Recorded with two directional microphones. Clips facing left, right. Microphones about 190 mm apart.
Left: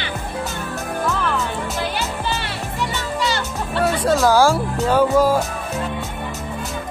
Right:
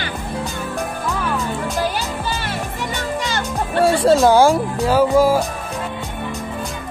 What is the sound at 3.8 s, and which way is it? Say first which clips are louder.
Speech: right 4 dB; 25° right (ahead or behind).